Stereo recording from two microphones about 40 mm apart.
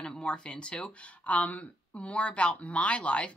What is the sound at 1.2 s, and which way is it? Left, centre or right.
Speech, left.